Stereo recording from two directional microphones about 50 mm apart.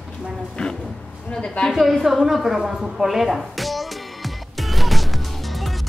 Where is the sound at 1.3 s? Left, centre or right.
Centre.